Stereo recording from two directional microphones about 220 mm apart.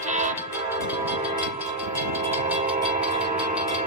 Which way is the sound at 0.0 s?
35° right (ahead or behind).